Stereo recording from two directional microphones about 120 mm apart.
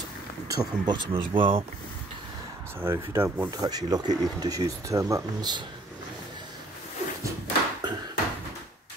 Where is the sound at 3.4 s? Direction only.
35° right (ahead or behind).